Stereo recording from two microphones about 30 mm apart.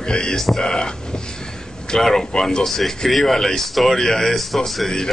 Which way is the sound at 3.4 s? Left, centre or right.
Centre.